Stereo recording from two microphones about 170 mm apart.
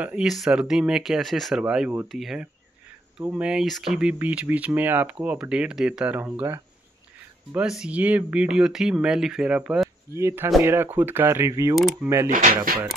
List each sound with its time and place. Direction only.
0.0 s speech: 5° right (ahead or behind)
11.7 s speech: centre (ahead or behind)
12.3 s speech: 55° right (ahead or behind)